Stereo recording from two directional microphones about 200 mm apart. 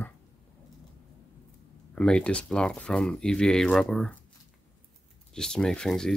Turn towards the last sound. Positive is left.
turn(degrees=0)  # may be behind; listen again after turning